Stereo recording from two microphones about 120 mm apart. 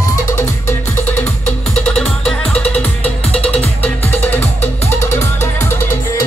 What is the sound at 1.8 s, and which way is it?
Music, 5° left (ahead or behind).